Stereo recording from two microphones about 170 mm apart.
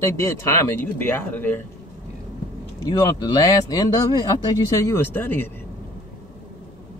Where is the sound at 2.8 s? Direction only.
20° left (ahead or behind).